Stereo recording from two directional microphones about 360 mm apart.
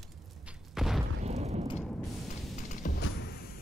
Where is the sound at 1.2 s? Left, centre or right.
Centre.